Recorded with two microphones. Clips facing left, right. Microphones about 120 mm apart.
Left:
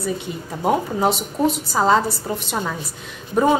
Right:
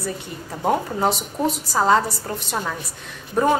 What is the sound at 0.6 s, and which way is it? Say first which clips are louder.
A woman's voice: left 2 dB; 5° left (ahead or behind).